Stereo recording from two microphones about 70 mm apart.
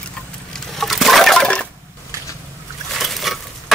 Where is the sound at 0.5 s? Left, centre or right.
Centre.